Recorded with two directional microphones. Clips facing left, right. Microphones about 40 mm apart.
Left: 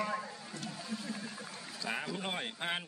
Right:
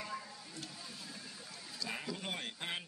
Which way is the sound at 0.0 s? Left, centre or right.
Left.